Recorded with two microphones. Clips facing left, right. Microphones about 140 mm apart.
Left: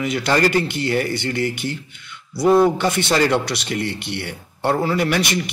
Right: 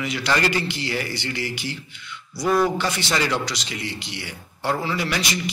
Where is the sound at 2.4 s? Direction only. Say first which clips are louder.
Left 6 dB; 25° left (ahead or behind).